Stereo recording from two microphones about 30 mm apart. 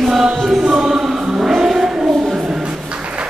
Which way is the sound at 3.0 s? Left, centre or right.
Right.